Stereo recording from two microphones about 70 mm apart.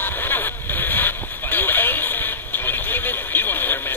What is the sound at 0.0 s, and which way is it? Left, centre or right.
Vehicle, left.